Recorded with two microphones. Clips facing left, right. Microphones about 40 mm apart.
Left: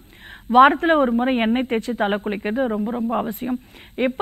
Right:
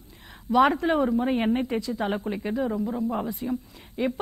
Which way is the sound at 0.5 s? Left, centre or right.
Left.